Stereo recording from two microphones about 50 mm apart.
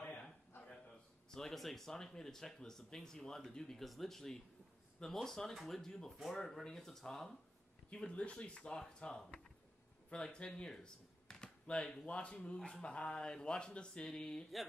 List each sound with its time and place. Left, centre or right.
1.3 s speech: centre
8.1 s speech: centre